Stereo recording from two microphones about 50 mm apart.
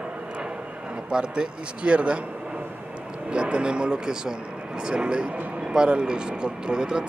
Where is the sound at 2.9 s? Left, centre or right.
Right.